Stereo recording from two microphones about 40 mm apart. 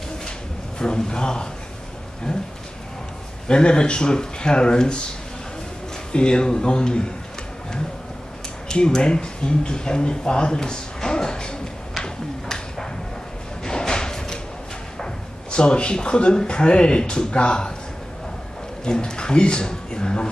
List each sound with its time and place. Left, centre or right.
0.7 s speech: left
3.4 s speech: left
6.1 s speech: left
8.6 s speech: centre
13.7 s a sound: centre
15.5 s speech: left
18.9 s speech: left